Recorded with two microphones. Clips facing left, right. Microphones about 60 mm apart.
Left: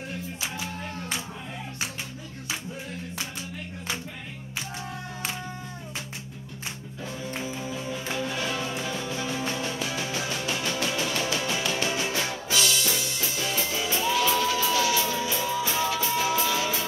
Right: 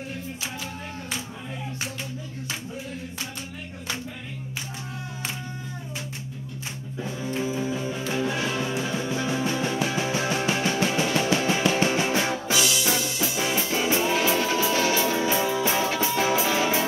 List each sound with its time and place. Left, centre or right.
7.5 s music: centre; by 12.5 s right
12.5 s music: centre
13.7 s music: right